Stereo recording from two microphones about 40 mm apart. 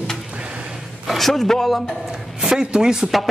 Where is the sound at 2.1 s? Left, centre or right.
Centre.